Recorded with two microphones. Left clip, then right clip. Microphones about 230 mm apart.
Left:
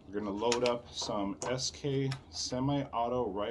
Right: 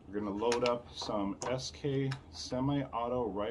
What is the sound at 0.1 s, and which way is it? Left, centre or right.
Speech, centre.